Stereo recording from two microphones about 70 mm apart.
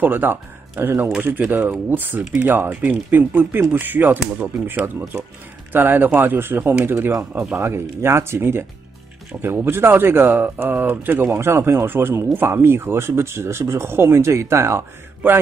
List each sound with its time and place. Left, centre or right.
0.0 s speech: right